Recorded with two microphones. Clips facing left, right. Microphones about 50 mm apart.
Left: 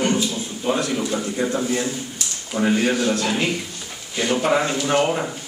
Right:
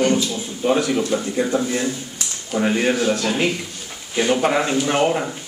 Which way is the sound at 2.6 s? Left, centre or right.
Right.